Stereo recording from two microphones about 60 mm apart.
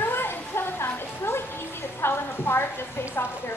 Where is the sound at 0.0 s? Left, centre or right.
Left.